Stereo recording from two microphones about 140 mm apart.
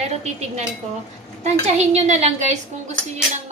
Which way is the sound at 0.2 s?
55° right (ahead or behind).